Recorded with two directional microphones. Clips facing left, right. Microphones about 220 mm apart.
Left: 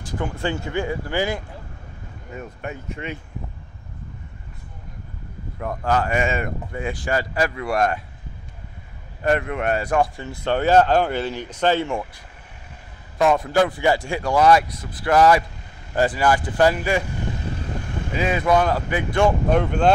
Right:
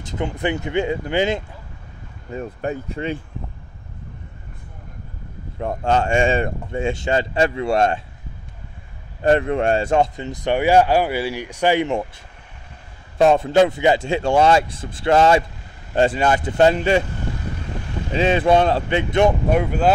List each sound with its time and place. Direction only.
0.0 s speech: 20° right (ahead or behind)
2.3 s speech: 35° right (ahead or behind)
5.6 s speech: 25° right (ahead or behind)
9.2 s speech: 30° right (ahead or behind)
13.2 s speech: 25° right (ahead or behind)
18.1 s speech: 25° right (ahead or behind)
19.5 s speech: 5° right (ahead or behind)